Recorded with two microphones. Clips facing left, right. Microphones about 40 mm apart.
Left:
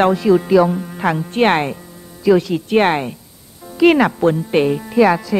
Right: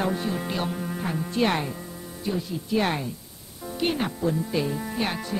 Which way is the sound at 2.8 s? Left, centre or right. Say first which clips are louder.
Left 11 dB; left.